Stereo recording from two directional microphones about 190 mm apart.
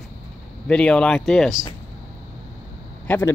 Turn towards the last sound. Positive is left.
turn(degrees=10)  # may be behind; listen again after turning